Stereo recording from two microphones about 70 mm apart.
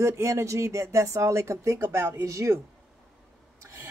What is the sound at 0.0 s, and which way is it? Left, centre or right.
Speech, right.